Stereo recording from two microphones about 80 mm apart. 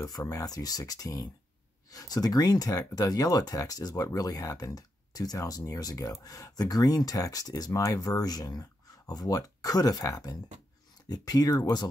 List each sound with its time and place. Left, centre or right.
0.0 s speech: left